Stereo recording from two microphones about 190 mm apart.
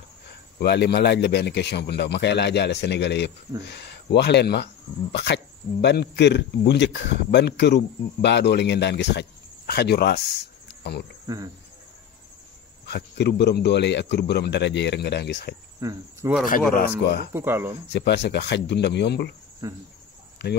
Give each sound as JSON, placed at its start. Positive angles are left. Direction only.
{"t": 0.6, "sound": "speech", "side_deg": 60}
{"t": 11.2, "sound": "speech", "side_deg": -20}
{"t": 12.9, "sound": "speech", "side_deg": 60}
{"t": 15.8, "sound": "speech", "side_deg": -15}
{"t": 16.7, "sound": "speech", "side_deg": 55}
{"t": 17.3, "sound": "speech", "side_deg": -10}
{"t": 17.9, "sound": "speech", "side_deg": 65}
{"t": 19.6, "sound": "speech", "side_deg": -15}